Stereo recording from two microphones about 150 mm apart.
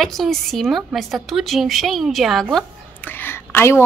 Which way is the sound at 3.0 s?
15° left (ahead or behind).